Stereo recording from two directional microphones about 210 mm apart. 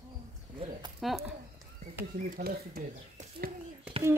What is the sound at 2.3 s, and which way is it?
Speech, 45° right (ahead or behind).